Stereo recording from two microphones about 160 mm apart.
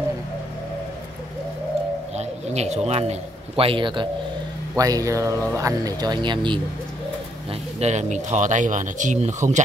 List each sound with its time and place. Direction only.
2.1 s a man's voice: 45° right (ahead or behind)
7.8 s speech: 45° right (ahead or behind)